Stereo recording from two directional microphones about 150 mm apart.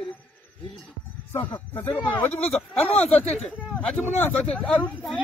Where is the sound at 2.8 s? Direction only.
45° left (ahead or behind).